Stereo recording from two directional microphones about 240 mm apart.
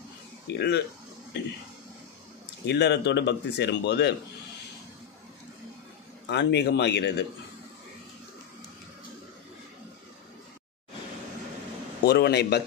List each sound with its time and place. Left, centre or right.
0.5 s speech: left
2.6 s speech: left
6.2 s speech: left
12.0 s speech: left